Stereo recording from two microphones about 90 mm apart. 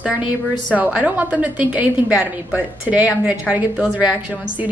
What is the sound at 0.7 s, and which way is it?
A woman's voice, 15° right (ahead or behind).